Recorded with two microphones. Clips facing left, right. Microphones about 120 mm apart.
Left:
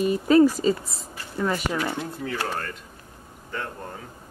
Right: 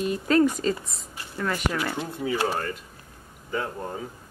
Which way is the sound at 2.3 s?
10° right (ahead or behind).